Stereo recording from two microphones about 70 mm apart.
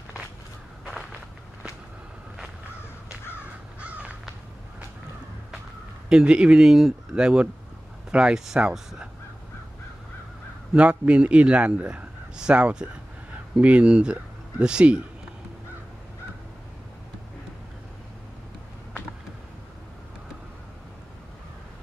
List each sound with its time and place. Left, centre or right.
3.8 s crow: centre
6.0 s a man's voice: centre
10.7 s a man's voice: centre